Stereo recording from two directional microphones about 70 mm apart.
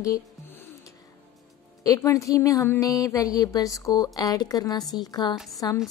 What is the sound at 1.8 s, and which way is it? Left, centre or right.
A woman's voice, left.